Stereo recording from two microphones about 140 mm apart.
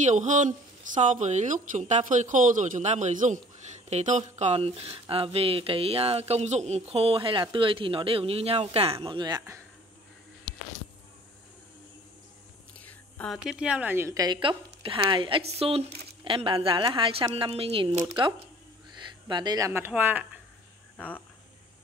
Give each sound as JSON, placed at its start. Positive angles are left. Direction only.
{"t": 0.0, "sound": "speech", "side_deg": -60}
{"t": 4.4, "sound": "a woman's voice", "side_deg": -50}
{"t": 9.0, "sound": "a woman's voice", "side_deg": -35}
{"t": 12.7, "sound": "a sound", "side_deg": 10}
{"t": 13.4, "sound": "a woman's voice", "side_deg": -5}
{"t": 19.7, "sound": "speech", "side_deg": -15}